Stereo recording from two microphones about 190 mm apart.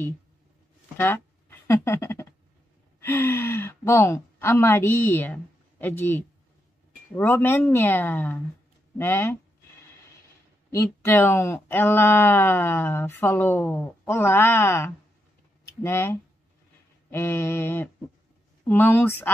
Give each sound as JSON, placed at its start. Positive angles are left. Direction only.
{"t": 0.9, "sound": "speech", "side_deg": 10}
{"t": 1.7, "sound": "a sound", "side_deg": 15}
{"t": 3.0, "sound": "speech", "side_deg": 10}
{"t": 10.7, "sound": "speech", "side_deg": 15}